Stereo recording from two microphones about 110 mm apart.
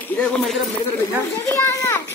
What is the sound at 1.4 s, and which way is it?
Speech, 25° left (ahead or behind).